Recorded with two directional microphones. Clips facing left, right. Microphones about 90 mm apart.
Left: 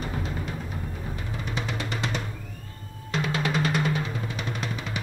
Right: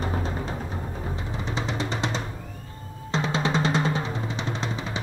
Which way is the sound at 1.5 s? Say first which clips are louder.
Right 3 dB; 25° right (ahead or behind).